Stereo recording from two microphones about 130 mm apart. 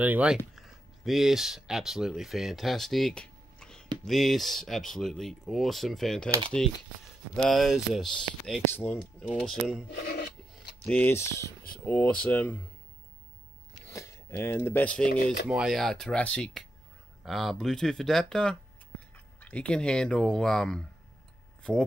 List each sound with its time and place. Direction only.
0.0 s speech: 10° right (ahead or behind)
10.9 s speech: 15° left (ahead or behind)
11.8 s speech: 10° left (ahead or behind)
13.8 s speech: 25° left (ahead or behind)
15.4 s speech: 5° right (ahead or behind)